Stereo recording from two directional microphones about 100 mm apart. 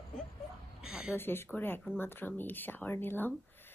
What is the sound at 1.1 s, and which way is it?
A woman's voice, 20° left (ahead or behind).